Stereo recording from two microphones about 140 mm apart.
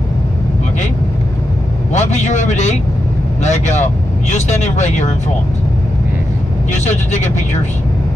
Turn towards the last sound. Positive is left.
turn(degrees=60)  # may be behind; listen again after turning